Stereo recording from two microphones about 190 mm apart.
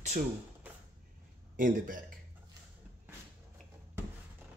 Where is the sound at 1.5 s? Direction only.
45° right (ahead or behind).